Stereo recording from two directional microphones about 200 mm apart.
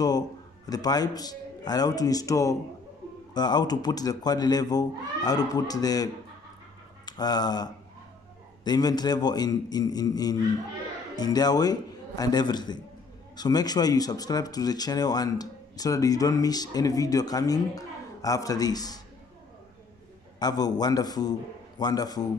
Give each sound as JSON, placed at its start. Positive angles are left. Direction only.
{"t": 0.7, "sound": "speech", "side_deg": 20}
{"t": 7.1, "sound": "a man's voice", "side_deg": 20}
{"t": 20.3, "sound": "speech", "side_deg": 20}